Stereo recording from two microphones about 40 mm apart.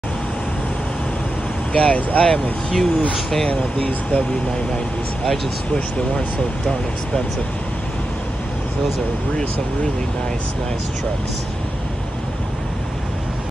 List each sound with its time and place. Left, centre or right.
1.7 s speech: left
2.1 s speech: centre
3.4 s speech: left